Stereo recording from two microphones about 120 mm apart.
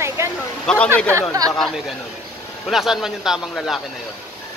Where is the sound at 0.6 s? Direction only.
10° left (ahead or behind).